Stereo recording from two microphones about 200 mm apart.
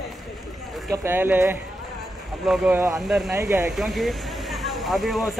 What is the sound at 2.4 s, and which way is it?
Speech, centre (ahead or behind).